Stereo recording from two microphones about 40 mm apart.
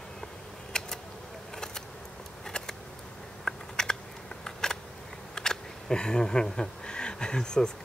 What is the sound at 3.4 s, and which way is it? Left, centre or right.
Typing, centre.